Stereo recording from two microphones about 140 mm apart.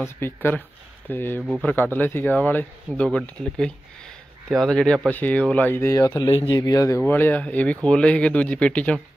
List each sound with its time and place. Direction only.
0.2 s speech: 15° left (ahead or behind)
7.0 s speech: 15° left (ahead or behind)